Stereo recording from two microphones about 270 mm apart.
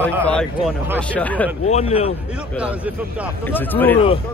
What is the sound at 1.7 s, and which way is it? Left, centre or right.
Speech, left.